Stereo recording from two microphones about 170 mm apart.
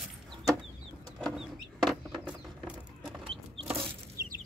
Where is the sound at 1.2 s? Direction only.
Centre (ahead or behind).